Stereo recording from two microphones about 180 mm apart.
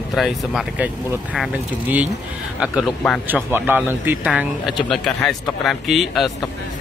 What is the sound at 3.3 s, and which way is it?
Speech, 10° right (ahead or behind).